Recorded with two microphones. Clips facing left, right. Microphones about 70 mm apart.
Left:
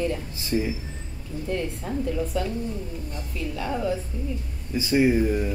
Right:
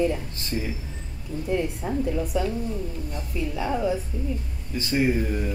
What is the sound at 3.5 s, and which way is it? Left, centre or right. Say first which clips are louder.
Speech: right 2 dB; centre.